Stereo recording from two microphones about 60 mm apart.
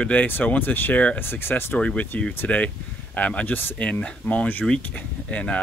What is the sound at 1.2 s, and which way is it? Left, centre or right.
Speech, left.